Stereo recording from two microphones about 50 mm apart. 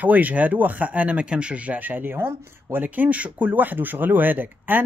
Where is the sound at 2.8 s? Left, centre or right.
Right.